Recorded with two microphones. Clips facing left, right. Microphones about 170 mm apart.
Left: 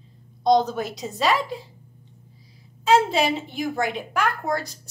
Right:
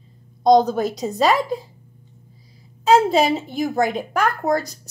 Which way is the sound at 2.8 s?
40° right (ahead or behind).